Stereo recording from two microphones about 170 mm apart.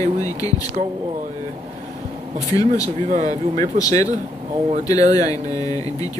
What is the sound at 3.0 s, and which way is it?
Speech, 45° right (ahead or behind).